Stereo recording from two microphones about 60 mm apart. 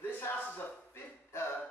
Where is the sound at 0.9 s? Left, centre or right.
Left.